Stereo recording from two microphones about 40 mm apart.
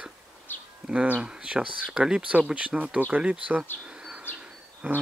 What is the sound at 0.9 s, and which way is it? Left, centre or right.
Speech, right.